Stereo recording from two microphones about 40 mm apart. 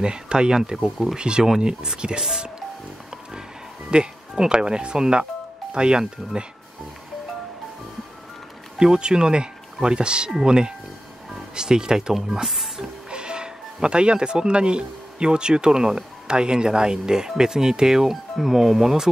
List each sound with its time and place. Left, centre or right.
0.0 s speech: right
3.9 s speech: right
8.7 s speech: centre